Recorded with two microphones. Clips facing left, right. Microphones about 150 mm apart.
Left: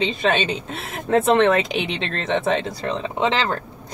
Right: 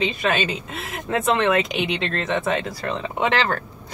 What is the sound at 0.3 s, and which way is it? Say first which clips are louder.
Speech: left 2 dB; centre (ahead or behind).